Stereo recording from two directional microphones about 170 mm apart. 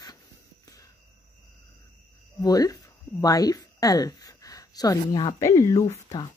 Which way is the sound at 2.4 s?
20° left (ahead or behind).